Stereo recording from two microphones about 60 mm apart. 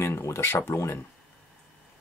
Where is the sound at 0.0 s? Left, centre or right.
Left.